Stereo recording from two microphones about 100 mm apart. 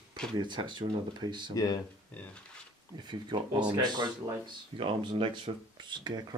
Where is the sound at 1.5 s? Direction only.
40° left (ahead or behind).